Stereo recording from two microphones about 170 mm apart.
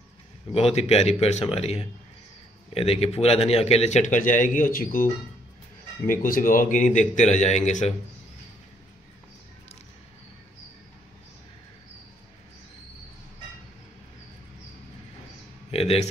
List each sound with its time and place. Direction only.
0.5 s speech: 35° left (ahead or behind); by 5.0 s 55° left (ahead or behind)
6.0 s speech: 55° left (ahead or behind)
15.7 s speech: 35° left (ahead or behind)